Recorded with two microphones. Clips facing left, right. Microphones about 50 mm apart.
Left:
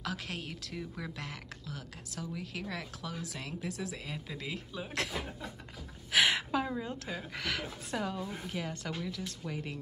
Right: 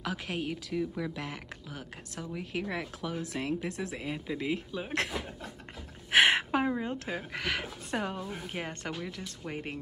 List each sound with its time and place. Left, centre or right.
0.0 s speech: centre
0.7 s speech: centre; by 9.8 s right